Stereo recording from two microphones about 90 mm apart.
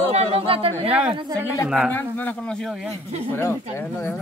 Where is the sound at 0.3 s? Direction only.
90° right.